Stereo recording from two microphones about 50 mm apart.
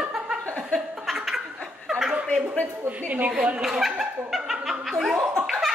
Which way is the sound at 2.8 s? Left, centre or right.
Right.